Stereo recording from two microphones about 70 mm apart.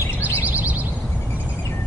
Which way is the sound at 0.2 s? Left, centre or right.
Right.